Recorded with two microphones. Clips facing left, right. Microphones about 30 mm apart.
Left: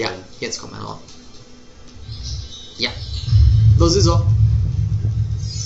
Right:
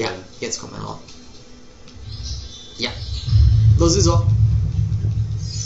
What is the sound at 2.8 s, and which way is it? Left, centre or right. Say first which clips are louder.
A man's voice: left 2 dB; left.